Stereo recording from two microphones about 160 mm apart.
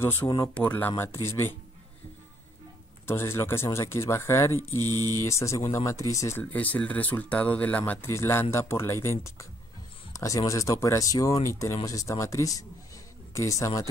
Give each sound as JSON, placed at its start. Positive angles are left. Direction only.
{"t": 0.0, "sound": "speech", "side_deg": 15}
{"t": 3.1, "sound": "speech", "side_deg": 15}
{"t": 4.7, "sound": "mantra", "side_deg": -25}
{"t": 5.1, "sound": "speech", "side_deg": 20}